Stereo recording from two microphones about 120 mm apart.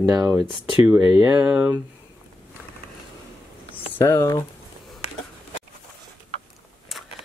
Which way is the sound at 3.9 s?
25° left (ahead or behind).